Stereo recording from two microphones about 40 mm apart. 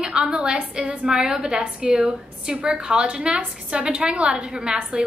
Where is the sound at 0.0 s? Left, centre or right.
Centre.